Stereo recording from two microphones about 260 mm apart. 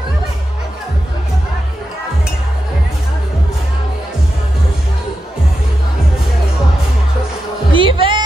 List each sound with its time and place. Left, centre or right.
7.7 s music: centre